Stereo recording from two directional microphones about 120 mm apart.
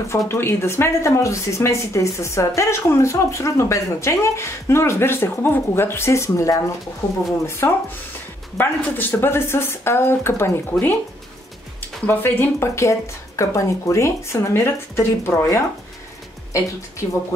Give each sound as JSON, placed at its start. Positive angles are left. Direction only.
{"t": 0.3, "sound": "speech", "side_deg": 20}
{"t": 12.1, "sound": "speech", "side_deg": 15}